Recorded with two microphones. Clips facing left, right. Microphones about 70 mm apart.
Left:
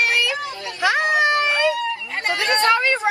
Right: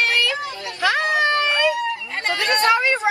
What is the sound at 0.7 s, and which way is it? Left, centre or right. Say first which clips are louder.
Cat: left 1 dB; left.